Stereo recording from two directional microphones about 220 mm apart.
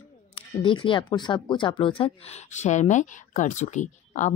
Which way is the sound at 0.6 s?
25° left (ahead or behind).